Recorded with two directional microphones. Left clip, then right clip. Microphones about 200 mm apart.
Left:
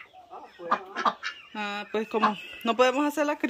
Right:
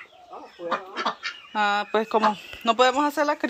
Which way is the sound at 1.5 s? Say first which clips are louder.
Right 11 dB; 5° left (ahead or behind).